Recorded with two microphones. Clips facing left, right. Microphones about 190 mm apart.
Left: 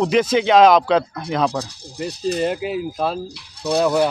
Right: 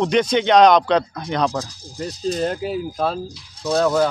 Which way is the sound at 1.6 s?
65° left (ahead or behind).